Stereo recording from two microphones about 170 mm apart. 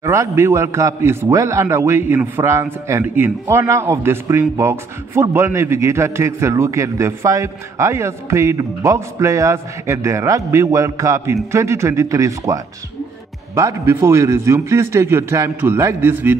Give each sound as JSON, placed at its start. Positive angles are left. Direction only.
{"t": 0.0, "sound": "a man's voice", "side_deg": -15}
{"t": 13.6, "sound": "a man's voice", "side_deg": -15}